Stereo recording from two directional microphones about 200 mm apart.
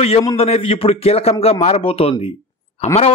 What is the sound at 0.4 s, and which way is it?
A man's voice, 30° left (ahead or behind).